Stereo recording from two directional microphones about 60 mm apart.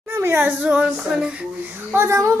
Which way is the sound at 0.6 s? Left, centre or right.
Right.